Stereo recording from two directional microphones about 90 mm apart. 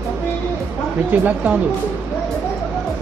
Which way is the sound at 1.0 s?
20° right (ahead or behind).